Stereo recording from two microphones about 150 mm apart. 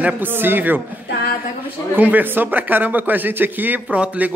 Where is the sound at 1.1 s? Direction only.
90° left.